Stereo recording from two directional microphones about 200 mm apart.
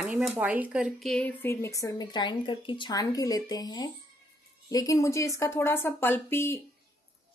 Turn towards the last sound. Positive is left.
turn(degrees=10)  # may be behind; listen again after turning